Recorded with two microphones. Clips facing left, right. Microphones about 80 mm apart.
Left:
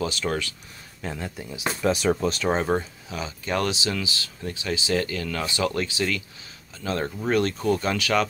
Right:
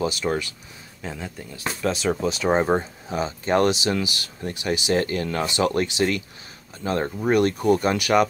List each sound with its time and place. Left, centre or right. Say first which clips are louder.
0.2 s speech: right 2 dB; centre
1.0 s speech: left 1 dB; centre; by 5.0 s right
5.0 s speech: right 4 dB; right